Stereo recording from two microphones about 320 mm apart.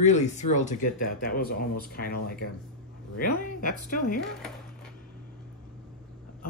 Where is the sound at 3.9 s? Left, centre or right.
Left.